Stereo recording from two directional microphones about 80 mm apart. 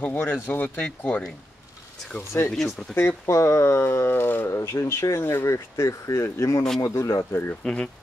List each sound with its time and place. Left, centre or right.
0.0 s speech: left
2.5 s speech: centre
3.0 s speech: left
7.6 s speech: centre